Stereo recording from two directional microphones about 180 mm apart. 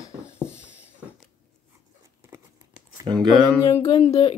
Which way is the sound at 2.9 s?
25° right (ahead or behind).